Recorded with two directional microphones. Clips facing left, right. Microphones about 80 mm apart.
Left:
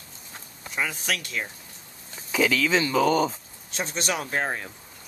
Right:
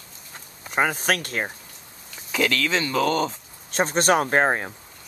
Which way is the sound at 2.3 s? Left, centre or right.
Centre.